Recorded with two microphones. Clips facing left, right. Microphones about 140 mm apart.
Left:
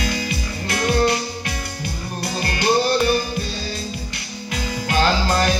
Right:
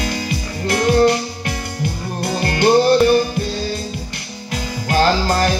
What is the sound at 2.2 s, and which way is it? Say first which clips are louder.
Music: right 7 dB; 55° right (ahead or behind).